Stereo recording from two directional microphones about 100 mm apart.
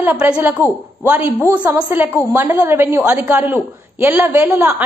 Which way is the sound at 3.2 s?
15° right (ahead or behind).